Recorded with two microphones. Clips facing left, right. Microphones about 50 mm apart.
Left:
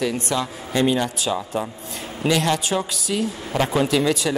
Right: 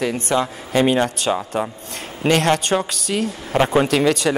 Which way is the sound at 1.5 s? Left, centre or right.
Right.